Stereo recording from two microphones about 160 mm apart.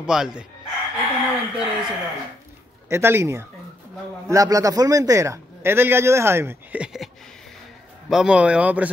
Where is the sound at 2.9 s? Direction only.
15° right (ahead or behind).